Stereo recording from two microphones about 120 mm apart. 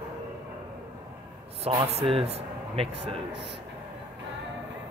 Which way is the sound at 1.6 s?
50° right (ahead or behind).